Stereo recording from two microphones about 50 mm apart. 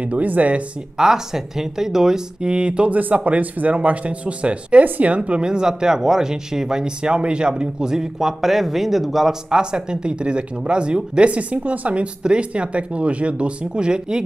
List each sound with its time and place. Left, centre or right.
0.0 s speech: right
0.9 s a woman's voice: centre
2.9 s a woman's voice: right